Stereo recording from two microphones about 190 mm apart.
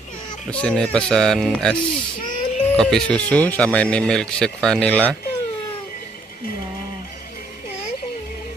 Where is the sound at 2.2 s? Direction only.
45° left (ahead or behind).